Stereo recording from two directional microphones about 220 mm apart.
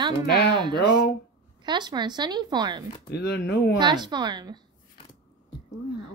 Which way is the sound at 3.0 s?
45° left (ahead or behind).